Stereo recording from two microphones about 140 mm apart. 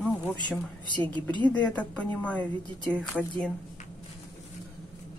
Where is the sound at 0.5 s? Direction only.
30° left (ahead or behind).